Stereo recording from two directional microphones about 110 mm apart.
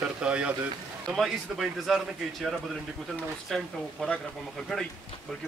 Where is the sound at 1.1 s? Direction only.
Centre (ahead or behind).